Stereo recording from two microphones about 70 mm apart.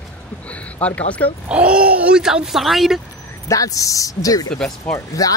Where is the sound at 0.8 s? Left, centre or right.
Left.